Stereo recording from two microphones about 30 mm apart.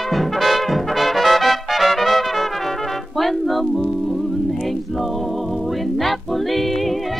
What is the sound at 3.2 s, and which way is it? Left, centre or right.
Music, centre.